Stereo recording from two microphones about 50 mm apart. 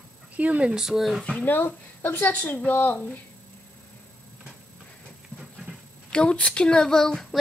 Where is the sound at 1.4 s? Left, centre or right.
Left.